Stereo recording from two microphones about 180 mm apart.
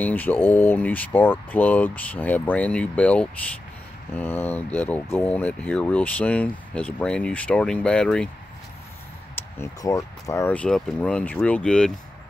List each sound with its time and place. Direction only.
0.0 s speech: 10° left (ahead or behind)
9.6 s speech: 20° left (ahead or behind)